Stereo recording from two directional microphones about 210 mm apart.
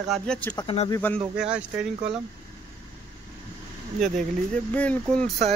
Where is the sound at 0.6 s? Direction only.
20° left (ahead or behind).